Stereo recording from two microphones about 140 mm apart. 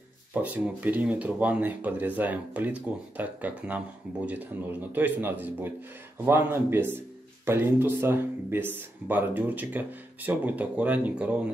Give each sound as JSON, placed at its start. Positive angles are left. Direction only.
{"t": 0.3, "sound": "speech", "side_deg": -10}